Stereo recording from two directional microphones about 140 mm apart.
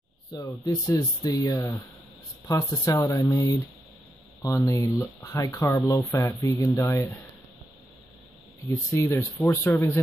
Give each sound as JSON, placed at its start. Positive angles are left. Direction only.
{"t": 0.3, "sound": "speech", "side_deg": 30}
{"t": 8.9, "sound": "speech", "side_deg": 20}